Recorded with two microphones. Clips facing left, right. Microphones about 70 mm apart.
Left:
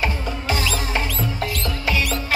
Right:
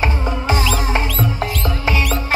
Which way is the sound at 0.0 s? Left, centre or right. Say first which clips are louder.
Right 4 dB; right.